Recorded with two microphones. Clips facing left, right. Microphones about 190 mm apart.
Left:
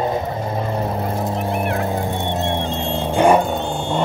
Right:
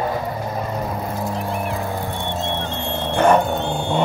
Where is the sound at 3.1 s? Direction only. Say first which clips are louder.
Left 1 dB; 10° left (ahead or behind).